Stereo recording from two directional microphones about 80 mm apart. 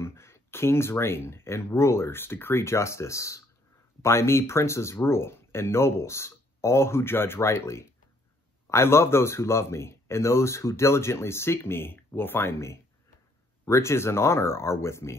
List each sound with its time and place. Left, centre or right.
0.0 s speech: left